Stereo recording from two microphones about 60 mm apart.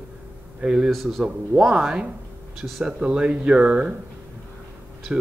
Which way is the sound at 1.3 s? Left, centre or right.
Centre.